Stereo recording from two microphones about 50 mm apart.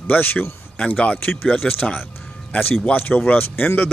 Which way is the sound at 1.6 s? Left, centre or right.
Centre.